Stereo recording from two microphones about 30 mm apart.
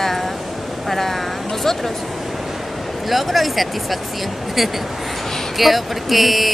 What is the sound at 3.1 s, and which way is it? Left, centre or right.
Speech, centre.